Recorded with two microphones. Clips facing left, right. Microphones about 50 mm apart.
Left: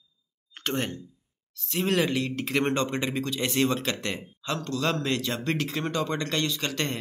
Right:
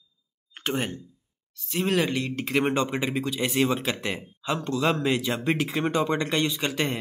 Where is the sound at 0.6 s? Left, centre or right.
Centre.